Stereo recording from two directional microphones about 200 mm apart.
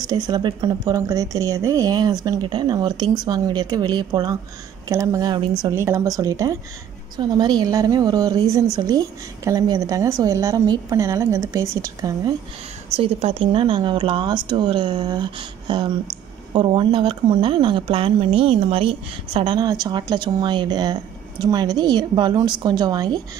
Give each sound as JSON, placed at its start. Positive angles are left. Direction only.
{"t": 0.1, "sound": "a woman's voice", "side_deg": -20}
{"t": 12.9, "sound": "speech", "side_deg": -30}